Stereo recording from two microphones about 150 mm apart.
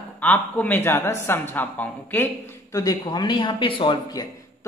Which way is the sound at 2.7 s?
25° left (ahead or behind).